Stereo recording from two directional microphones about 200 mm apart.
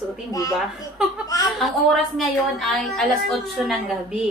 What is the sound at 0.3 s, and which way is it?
Speech, 15° left (ahead or behind).